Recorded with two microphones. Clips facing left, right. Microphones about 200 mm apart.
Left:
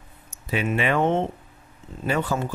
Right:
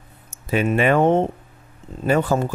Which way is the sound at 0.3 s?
45° right (ahead or behind).